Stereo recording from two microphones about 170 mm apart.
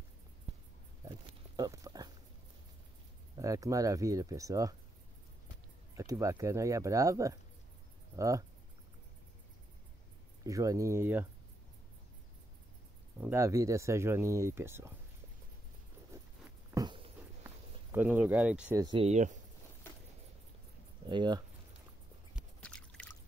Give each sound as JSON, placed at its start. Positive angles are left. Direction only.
{"t": 1.6, "sound": "dog", "side_deg": -20}
{"t": 3.3, "sound": "speech", "side_deg": -20}
{"t": 5.9, "sound": "speech", "side_deg": -20}
{"t": 10.4, "sound": "speech", "side_deg": -20}
{"t": 13.2, "sound": "speech", "side_deg": -15}
{"t": 16.7, "sound": "a sound", "side_deg": -25}
{"t": 17.9, "sound": "speech", "side_deg": -10}
{"t": 18.9, "sound": "speech", "side_deg": -40}
{"t": 21.1, "sound": "speech", "side_deg": -25}
{"t": 22.6, "sound": "drip", "side_deg": 5}